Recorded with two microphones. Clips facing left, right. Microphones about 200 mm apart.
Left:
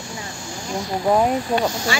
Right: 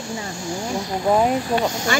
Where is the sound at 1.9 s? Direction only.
50° right (ahead or behind).